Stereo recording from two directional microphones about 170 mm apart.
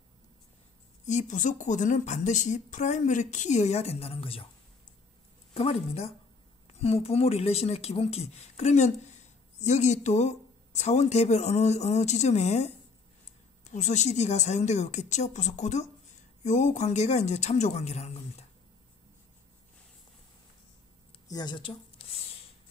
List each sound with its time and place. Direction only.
1.0 s a woman's voice: 45° left (ahead or behind)
5.5 s a woman's voice: 35° left (ahead or behind)
21.3 s speech: 25° left (ahead or behind)